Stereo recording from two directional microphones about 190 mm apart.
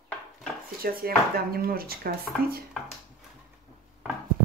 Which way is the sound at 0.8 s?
50° right (ahead or behind).